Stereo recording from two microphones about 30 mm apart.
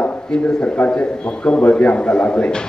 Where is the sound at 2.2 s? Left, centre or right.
Left.